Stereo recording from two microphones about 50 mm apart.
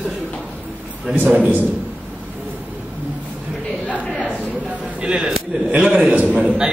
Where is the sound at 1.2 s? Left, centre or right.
Right.